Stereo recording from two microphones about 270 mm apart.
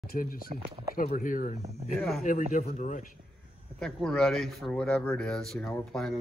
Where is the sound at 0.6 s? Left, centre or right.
Right.